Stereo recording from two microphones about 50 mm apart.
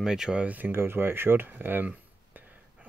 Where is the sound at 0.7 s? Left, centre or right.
Right.